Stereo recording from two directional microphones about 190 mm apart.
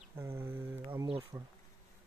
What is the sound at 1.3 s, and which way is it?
Bee, 20° right (ahead or behind).